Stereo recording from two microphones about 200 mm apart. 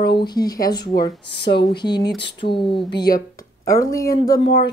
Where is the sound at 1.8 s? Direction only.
20° left (ahead or behind).